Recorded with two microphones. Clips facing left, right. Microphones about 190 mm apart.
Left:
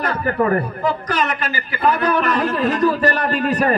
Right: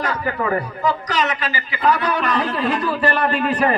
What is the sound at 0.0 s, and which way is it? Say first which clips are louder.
A man's voice: left 3 dB; 50° left (ahead or behind).